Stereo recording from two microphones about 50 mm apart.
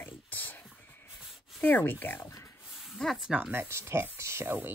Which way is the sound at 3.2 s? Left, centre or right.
Centre.